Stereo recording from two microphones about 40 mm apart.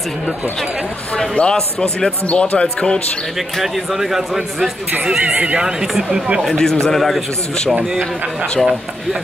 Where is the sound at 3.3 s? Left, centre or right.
Centre.